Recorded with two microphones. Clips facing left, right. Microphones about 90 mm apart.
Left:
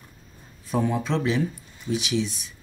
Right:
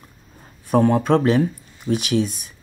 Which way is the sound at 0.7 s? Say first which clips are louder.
Right 9 dB; 60° right (ahead or behind).